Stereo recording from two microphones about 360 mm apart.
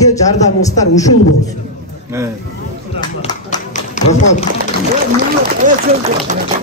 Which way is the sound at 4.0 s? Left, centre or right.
Centre.